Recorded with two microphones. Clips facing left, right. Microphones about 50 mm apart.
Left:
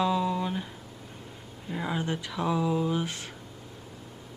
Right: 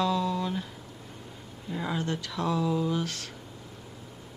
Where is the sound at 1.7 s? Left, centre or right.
Centre.